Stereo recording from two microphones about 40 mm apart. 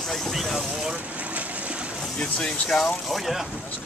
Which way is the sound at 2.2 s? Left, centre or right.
Centre.